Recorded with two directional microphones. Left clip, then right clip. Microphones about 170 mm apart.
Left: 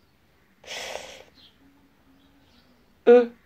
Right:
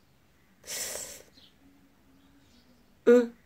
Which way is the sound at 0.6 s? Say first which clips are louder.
Left 4 dB; 50° right (ahead or behind).